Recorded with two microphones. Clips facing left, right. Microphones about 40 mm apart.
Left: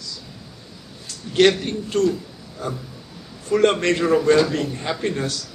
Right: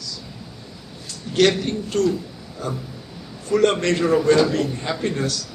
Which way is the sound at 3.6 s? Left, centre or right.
Left.